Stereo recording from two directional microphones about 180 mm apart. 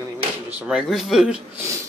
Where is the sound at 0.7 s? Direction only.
5° right (ahead or behind).